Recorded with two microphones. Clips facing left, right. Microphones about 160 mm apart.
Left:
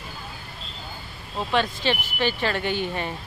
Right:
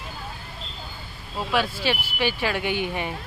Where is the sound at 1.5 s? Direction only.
10° right (ahead or behind).